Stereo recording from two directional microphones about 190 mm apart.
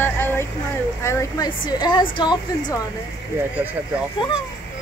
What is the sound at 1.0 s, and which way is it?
A woman's voice, 15° left (ahead or behind).